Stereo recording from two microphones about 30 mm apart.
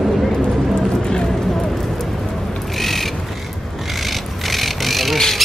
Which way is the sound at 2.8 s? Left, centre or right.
Centre.